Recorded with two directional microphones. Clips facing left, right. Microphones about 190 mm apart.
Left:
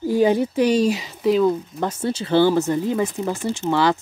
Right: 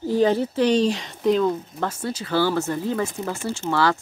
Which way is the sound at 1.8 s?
25° left (ahead or behind).